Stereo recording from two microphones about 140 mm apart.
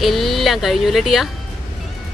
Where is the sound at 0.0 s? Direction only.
Centre (ahead or behind).